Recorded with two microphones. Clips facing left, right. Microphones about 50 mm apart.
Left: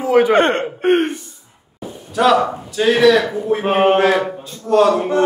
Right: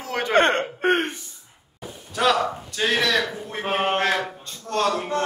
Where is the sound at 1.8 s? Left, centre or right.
Centre.